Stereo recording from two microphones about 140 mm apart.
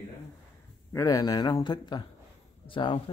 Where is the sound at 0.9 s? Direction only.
25° left (ahead or behind).